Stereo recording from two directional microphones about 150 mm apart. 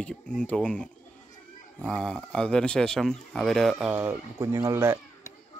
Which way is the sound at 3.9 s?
15° right (ahead or behind).